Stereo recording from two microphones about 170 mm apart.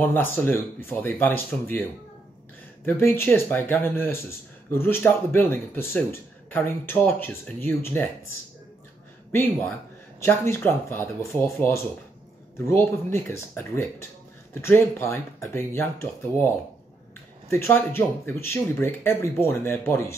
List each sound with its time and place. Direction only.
0.0 s speech: 10° left (ahead or behind)
9.3 s speech: 15° left (ahead or behind)
17.5 s speech: 15° left (ahead or behind)